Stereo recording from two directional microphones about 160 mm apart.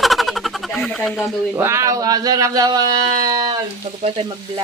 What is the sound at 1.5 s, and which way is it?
Speech, 15° right (ahead or behind).